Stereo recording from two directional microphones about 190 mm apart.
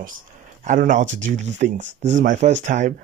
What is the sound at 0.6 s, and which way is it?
Speech, 40° right (ahead or behind).